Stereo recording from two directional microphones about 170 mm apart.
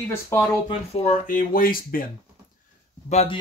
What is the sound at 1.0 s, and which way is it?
Speech, 50° left (ahead or behind).